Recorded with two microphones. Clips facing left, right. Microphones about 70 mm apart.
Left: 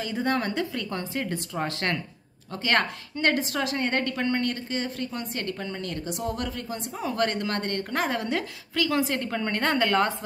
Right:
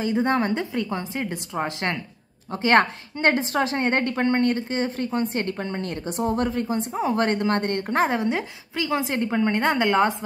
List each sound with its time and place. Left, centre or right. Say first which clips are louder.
0.0 s a woman's voice: right 5 dB; right
2.5 s a woman's voice: right 6 dB; right